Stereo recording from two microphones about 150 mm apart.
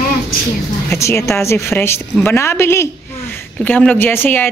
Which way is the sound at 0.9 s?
20° left (ahead or behind).